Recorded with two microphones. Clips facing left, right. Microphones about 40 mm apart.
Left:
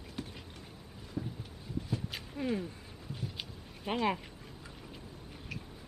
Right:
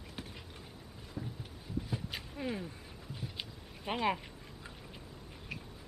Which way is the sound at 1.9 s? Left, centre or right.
Centre.